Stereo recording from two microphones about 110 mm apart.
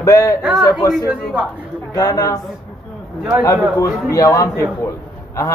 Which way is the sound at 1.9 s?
30° left (ahead or behind).